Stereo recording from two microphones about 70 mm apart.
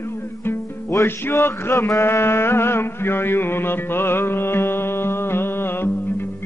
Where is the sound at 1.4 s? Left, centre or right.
Left.